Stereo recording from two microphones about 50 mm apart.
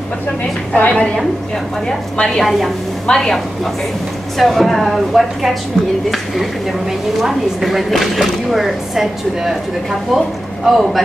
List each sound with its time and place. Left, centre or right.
0.7 s a woman's voice: left
2.2 s speech: centre
3.1 s a woman's voice: centre
4.4 s speech: centre